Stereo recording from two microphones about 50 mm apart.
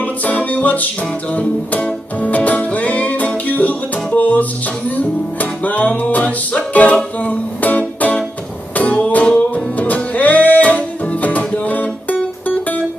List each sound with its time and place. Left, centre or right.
0.0 s music: left